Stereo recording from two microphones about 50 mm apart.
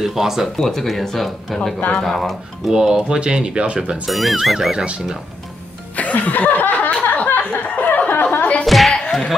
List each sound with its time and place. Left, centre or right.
0.0 s speech: centre
0.6 s speech: centre
2.7 s speech: centre
4.1 s speech: centre
4.6 s speech: centre
5.9 s chuckle: left
7.2 s a sound: left
8.6 s a sound: centre